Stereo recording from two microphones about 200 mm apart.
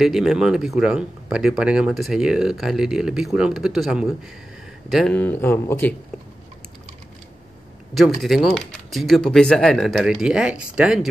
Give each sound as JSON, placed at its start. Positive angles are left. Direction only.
{"t": 0.0, "sound": "speech", "side_deg": 0}
{"t": 7.9, "sound": "speech", "side_deg": 0}